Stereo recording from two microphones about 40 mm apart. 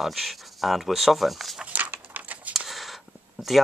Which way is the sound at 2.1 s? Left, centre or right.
Right.